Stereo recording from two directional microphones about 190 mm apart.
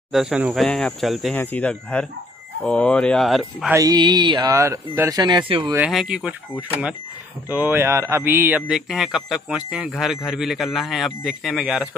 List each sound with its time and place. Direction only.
0.1 s a man's voice: 5° right (ahead or behind)
3.7 s speech: 20° right (ahead or behind)
5.8 s a man's voice: 5° right (ahead or behind)